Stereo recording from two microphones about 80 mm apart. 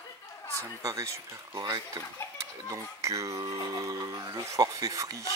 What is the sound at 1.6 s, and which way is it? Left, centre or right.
Speech, right.